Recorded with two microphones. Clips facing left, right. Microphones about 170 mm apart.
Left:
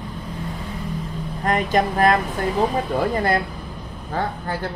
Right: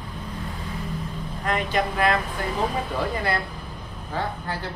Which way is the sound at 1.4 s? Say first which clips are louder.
Left 5 dB; 40° left (ahead or behind).